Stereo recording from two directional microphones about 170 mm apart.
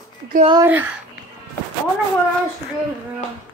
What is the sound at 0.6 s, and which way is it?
Speech, 10° right (ahead or behind).